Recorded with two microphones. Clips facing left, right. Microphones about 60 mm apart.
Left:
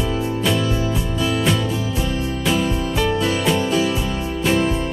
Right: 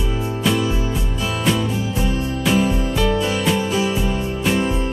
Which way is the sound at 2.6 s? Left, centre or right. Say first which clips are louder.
Right 1 dB; right.